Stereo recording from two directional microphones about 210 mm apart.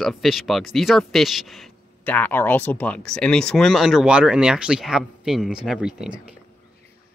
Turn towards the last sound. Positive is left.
turn(degrees=-5)  # may be behind; listen again after turning